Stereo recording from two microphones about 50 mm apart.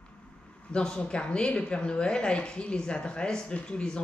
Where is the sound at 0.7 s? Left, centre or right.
Centre.